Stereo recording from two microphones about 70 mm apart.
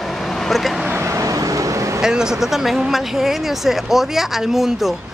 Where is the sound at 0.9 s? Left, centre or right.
Right.